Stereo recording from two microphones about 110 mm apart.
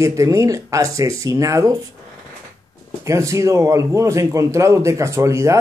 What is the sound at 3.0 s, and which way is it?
Speech, 30° right (ahead or behind).